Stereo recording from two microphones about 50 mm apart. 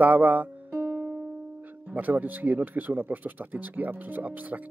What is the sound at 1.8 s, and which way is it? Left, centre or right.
Speech, right.